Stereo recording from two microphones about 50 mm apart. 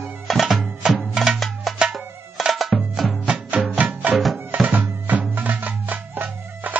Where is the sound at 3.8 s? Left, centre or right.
Right.